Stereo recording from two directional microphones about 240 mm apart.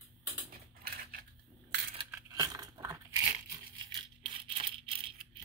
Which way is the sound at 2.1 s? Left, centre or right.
Centre.